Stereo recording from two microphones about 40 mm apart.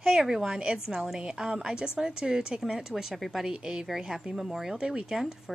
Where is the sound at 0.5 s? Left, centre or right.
Centre.